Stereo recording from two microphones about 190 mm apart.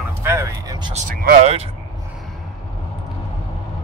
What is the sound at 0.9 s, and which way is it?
Speech, 45° right (ahead or behind).